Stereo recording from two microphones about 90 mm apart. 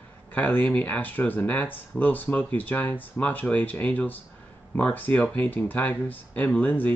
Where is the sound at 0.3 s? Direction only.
20° left (ahead or behind).